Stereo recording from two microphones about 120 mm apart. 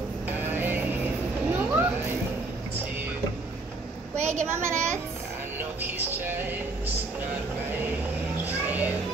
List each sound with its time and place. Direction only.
0.3 s music: 15° right (ahead or behind)
1.5 s vehicle: 15° right (ahead or behind)
4.2 s a child's voice: 20° right (ahead or behind)
8.5 s a sound: 15° right (ahead or behind)